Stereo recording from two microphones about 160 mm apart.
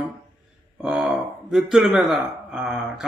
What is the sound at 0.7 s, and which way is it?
Speech, 5° right (ahead or behind).